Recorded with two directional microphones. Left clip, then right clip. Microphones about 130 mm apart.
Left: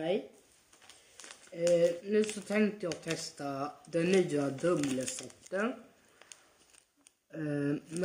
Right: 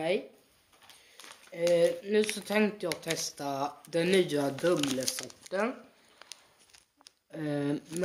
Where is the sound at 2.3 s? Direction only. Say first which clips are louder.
Right 3 dB; 5° left (ahead or behind).